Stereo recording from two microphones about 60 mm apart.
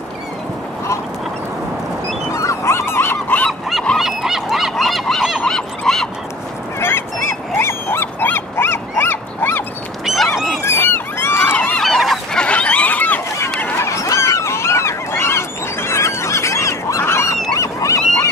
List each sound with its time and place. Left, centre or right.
2.3 s dog: left
4.0 s goose: centre
5.2 s fowl: centre
5.5 s goose: centre
6.8 s honk: left
7.6 s dog: left
10.0 s dog: centre
10.6 s a sound: left
11.5 s fowl: left
11.8 s fowl: centre
12.4 s a sound: centre
13.8 s goose: left
17.5 s a sound: left